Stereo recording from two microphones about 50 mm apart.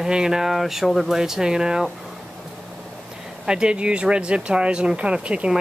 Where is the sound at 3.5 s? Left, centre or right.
Centre.